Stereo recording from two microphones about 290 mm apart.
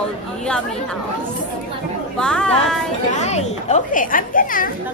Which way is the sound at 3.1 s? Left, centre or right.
Left.